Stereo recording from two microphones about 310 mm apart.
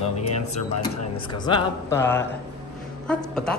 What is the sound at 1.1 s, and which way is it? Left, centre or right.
A woman's voice, centre.